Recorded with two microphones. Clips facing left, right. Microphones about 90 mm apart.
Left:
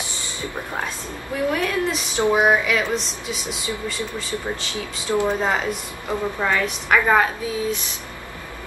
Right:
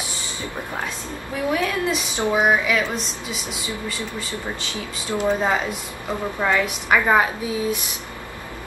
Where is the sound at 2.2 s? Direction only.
15° left (ahead or behind).